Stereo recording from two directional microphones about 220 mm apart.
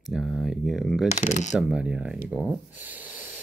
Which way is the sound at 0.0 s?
Centre (ahead or behind).